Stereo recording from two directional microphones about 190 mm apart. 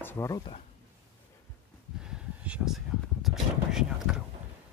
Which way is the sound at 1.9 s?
5° right (ahead or behind).